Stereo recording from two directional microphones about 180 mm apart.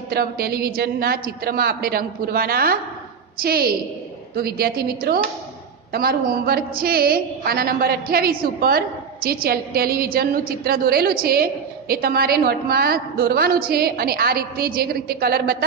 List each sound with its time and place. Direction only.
0.1 s a woman's voice: 60° right (ahead or behind)